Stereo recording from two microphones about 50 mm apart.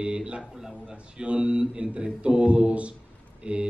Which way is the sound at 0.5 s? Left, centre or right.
Centre.